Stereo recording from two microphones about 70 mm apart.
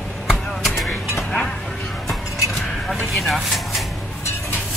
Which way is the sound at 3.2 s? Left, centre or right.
Centre.